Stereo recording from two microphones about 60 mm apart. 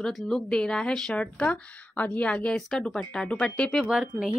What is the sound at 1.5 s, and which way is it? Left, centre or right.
Speech, left.